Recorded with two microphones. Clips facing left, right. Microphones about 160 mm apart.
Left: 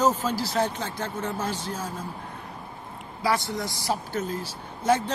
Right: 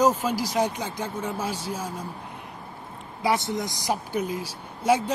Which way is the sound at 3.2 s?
20° right (ahead or behind).